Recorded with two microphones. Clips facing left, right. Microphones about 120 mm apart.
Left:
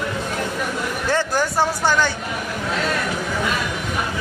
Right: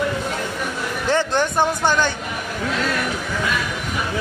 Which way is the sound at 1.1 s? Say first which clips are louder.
Right 2 dB; 20° right (ahead or behind).